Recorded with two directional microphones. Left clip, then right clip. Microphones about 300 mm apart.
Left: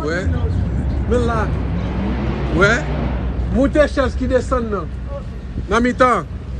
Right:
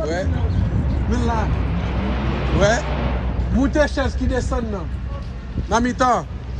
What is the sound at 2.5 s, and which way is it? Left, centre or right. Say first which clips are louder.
A man's voice: left 3 dB; centre.